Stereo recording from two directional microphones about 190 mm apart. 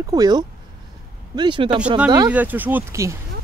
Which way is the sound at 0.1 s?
20° right (ahead or behind).